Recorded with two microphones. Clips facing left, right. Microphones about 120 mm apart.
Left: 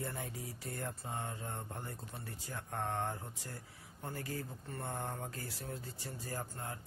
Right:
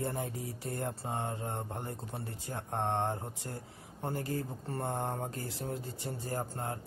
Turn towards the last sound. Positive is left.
turn(degrees=-30)  # may be behind; listen again after turning